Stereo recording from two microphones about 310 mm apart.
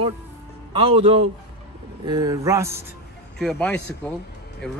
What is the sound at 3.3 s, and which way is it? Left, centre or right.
Speech, centre.